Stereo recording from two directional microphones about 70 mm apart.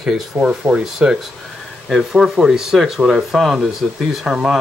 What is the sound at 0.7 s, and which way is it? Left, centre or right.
Speech, right.